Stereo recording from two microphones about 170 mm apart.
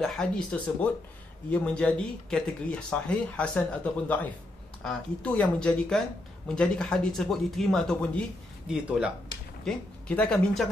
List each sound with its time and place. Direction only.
0.0 s speech: 5° left (ahead or behind)
8.6 s speech: 5° right (ahead or behind)
9.7 s speech: 5° left (ahead or behind)